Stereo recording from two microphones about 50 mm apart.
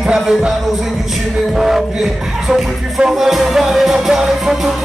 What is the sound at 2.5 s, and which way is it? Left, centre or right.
Music, centre.